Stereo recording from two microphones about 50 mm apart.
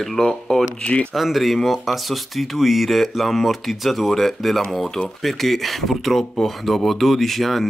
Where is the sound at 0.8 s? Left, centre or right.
Left.